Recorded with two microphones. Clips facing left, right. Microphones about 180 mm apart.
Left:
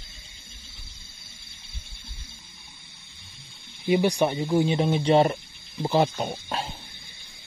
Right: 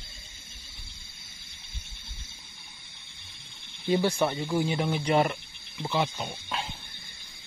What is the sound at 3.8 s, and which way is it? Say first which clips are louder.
Speech: left 3 dB; 15° left (ahead or behind).